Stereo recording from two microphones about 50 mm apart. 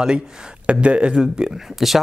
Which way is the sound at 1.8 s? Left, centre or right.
Centre.